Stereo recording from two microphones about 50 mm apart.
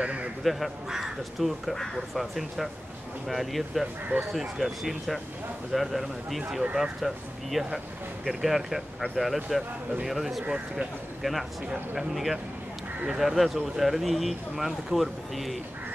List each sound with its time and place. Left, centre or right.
0.0 s crow: right
0.4 s speech: centre
1.4 s speech: centre